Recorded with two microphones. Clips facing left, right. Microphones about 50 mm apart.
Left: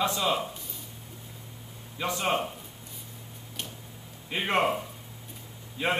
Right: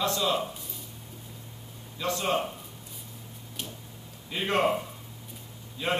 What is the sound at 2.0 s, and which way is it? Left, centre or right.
Speech, left.